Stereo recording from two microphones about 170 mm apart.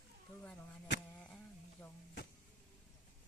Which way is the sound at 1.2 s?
10° left (ahead or behind).